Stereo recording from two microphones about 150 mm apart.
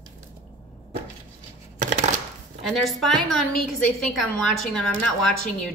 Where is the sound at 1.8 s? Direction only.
55° right (ahead or behind).